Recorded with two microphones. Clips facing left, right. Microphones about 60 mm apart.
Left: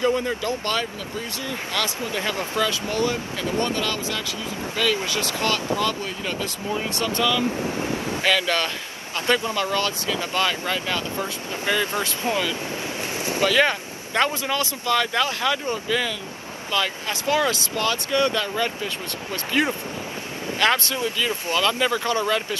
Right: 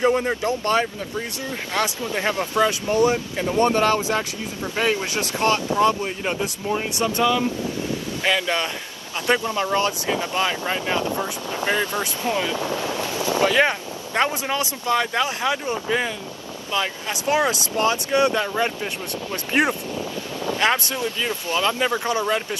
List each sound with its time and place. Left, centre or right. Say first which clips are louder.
0.0 s speech: right 3 dB; right
12.2 s speech: right 1 dB; left
12.9 s vehicle: right 4 dB; left
13.4 s speech: even; right